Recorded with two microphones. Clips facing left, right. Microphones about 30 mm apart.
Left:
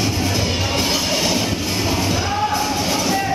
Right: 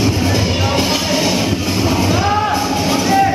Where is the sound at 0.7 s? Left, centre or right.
Centre.